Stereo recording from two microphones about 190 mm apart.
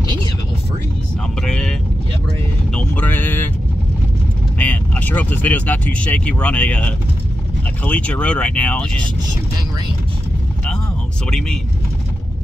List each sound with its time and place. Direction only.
1.4 s vehicle: 5° left (ahead or behind)
2.7 s a sound: 5° left (ahead or behind)
4.6 s speech: 10° left (ahead or behind)
11.2 s speech: 5° left (ahead or behind)